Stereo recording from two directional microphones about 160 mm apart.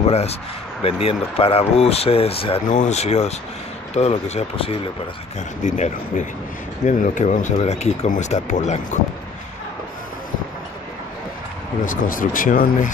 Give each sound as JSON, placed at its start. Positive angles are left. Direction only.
{"t": 0.0, "sound": "speech", "side_deg": 40}
{"t": 2.7, "sound": "speech", "side_deg": 45}
{"t": 11.8, "sound": "speech", "side_deg": 55}